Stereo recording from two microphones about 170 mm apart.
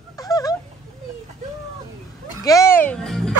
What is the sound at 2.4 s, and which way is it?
Music, 20° left (ahead or behind).